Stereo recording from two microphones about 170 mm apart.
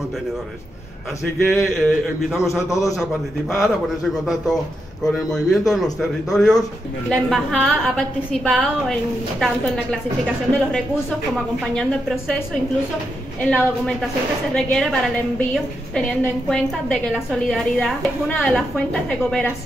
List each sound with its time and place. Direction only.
1.4 s a woman's voice: centre (ahead or behind)
2.7 s a man's voice: 20° left (ahead or behind)
3.0 s a woman's voice: centre (ahead or behind)